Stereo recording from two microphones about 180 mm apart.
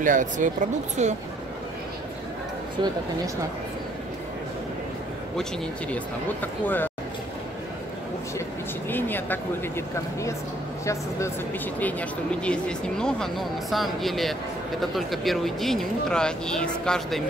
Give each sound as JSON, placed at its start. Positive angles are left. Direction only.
{"t": 0.0, "sound": "speech", "side_deg": -45}
{"t": 2.8, "sound": "speech", "side_deg": -25}
{"t": 6.4, "sound": "speech", "side_deg": 10}
{"t": 8.8, "sound": "speech", "side_deg": 10}